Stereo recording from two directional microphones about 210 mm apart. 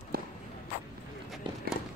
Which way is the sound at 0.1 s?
45° right (ahead or behind).